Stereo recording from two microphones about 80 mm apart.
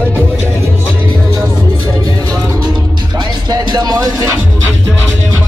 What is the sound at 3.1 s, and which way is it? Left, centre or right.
Music, right.